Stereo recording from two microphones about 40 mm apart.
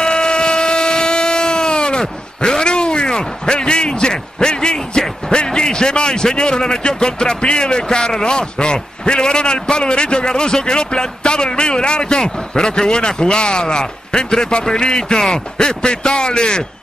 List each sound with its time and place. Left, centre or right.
0.0 s vehicle: centre
6.6 s speech: left